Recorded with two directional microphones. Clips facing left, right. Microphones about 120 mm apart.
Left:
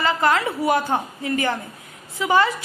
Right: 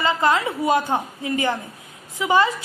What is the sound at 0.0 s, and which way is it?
A woman's voice, 15° right (ahead or behind).